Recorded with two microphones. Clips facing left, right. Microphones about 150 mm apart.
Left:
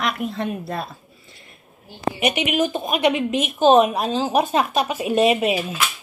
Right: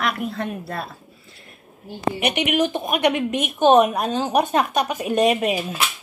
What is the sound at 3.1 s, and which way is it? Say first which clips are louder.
Speech: left 1 dB; 50° right (ahead or behind).